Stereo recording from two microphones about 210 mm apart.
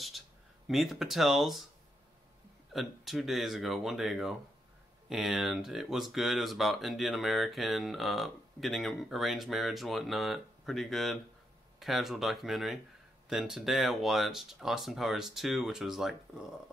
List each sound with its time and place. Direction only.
0.7 s speech: centre (ahead or behind)
2.7 s speech: centre (ahead or behind)